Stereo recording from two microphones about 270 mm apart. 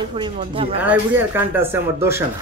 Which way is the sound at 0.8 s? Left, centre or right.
Centre.